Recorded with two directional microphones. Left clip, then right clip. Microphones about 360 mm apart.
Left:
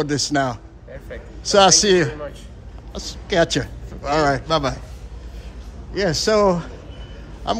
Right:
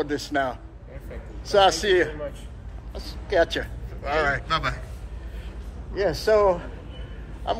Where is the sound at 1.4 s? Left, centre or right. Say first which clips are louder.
Left 5 dB; centre.